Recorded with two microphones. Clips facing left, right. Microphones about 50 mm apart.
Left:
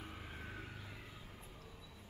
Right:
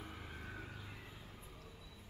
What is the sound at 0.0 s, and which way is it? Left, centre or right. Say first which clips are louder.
Vehicle: even; centre.